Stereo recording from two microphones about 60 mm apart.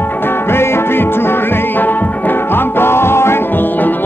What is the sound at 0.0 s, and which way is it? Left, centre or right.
Music, left.